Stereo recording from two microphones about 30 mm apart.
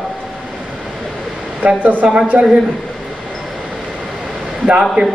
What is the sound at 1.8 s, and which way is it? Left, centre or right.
Speech, right.